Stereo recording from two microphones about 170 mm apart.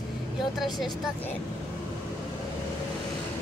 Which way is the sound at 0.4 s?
Centre (ahead or behind).